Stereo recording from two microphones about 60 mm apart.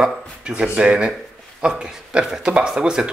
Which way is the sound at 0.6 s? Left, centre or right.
Centre.